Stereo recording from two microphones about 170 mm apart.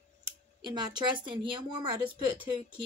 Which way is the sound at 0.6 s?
25° right (ahead or behind).